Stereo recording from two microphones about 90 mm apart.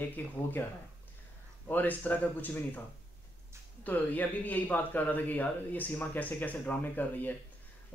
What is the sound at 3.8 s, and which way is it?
A man's voice, 20° left (ahead or behind).